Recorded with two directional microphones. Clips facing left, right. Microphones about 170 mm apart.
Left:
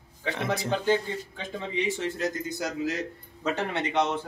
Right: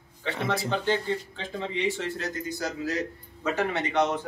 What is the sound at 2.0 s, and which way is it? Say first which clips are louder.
Speech: left 2 dB; 20° left (ahead or behind).